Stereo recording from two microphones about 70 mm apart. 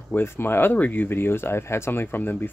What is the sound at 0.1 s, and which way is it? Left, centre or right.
Speech, left.